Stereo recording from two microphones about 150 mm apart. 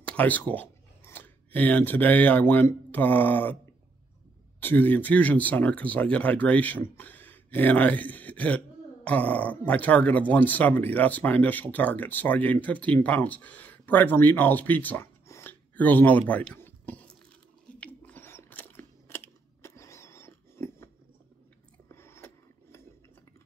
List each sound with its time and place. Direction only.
0.0 s speech: 10° left (ahead or behind)
4.6 s speech: 15° left (ahead or behind)
17.7 s crunch: 10° left (ahead or behind)
21.8 s gears: 15° left (ahead or behind)